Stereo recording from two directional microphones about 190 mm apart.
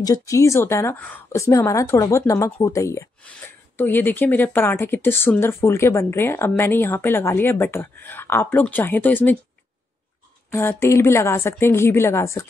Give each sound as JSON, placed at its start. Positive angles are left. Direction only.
{"t": 0.0, "sound": "speech", "side_deg": 15}
{"t": 10.5, "sound": "speech", "side_deg": 15}